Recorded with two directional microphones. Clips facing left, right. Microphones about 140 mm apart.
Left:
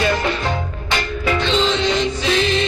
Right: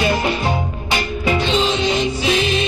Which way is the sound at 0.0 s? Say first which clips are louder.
Right 1 dB; 15° right (ahead or behind).